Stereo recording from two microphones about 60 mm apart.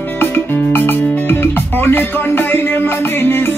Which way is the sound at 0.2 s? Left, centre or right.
Left.